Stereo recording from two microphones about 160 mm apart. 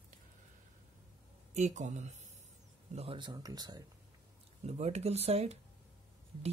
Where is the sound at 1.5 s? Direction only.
45° right (ahead or behind).